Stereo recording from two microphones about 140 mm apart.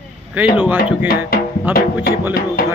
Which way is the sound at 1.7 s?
15° right (ahead or behind).